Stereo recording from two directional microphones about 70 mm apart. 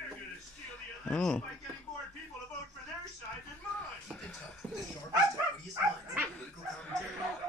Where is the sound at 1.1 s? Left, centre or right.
Centre.